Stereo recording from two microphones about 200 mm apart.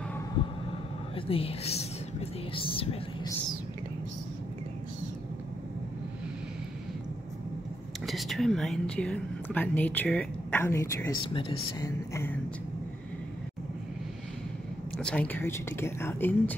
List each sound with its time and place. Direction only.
0.4 s vehicle: 25° left (ahead or behind)
1.1 s a woman's voice: 30° left (ahead or behind)
8.1 s a woman's voice: centre (ahead or behind)
11.2 s a woman's voice: 25° left (ahead or behind)
12.1 s a woman's voice: 10° left (ahead or behind)
15.0 s a woman's voice: 5° left (ahead or behind)